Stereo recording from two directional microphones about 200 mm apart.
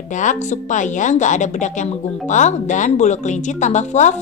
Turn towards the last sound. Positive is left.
turn(degrees=35)  # may be behind; listen again after turning